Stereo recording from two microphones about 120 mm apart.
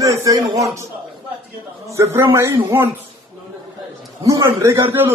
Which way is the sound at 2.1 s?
20° right (ahead or behind).